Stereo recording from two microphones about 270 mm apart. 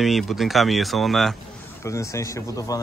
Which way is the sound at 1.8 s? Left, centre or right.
Centre.